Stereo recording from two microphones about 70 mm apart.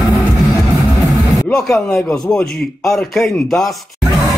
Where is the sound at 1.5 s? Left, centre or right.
Centre.